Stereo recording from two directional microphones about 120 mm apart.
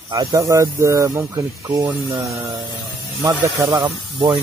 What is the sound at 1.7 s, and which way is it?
Speech, 30° right (ahead or behind).